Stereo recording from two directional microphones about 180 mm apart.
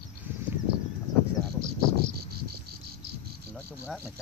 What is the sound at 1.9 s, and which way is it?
Cricket, 60° right (ahead or behind).